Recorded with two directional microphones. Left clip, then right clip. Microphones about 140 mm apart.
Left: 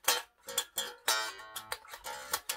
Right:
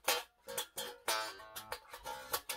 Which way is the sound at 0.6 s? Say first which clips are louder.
Left 7 dB; 30° left (ahead or behind).